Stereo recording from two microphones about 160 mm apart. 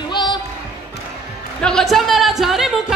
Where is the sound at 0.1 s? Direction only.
30° left (ahead or behind).